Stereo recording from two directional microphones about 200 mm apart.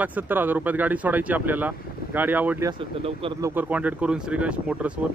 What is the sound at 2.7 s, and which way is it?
Speech, 25° right (ahead or behind).